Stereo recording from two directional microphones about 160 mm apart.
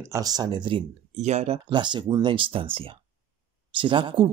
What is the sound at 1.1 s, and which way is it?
Speech, 45° right (ahead or behind).